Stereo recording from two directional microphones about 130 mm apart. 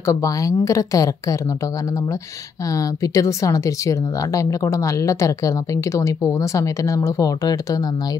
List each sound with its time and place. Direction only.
0.0 s speech: 25° left (ahead or behind)
2.7 s speech: 25° left (ahead or behind)